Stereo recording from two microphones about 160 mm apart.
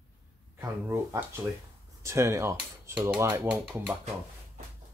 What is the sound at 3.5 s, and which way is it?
Speech, 5° right (ahead or behind).